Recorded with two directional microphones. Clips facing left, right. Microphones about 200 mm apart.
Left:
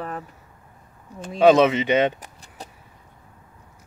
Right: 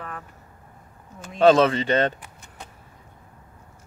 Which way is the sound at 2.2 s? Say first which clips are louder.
Left 2 dB; 35° left (ahead or behind).